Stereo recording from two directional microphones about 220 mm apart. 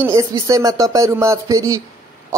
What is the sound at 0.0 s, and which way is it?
A man's voice, 15° right (ahead or behind).